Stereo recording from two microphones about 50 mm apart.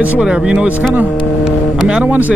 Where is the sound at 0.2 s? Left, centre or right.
Centre.